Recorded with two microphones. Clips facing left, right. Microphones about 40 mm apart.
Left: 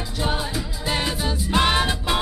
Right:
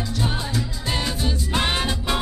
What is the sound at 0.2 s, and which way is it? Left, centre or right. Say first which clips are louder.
Music: left 2 dB; centre.